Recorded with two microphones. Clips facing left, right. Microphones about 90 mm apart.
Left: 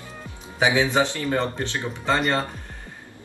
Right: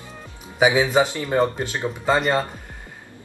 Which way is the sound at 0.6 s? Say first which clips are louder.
Right 3 dB; 15° right (ahead or behind).